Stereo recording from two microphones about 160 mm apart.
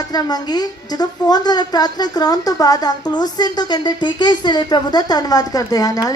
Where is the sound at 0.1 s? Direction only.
25° left (ahead or behind).